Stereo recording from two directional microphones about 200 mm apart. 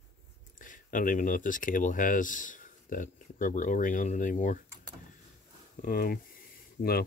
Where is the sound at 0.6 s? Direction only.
40° left (ahead or behind).